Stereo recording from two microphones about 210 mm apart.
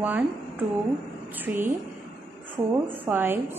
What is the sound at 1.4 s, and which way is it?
Speech, 10° right (ahead or behind).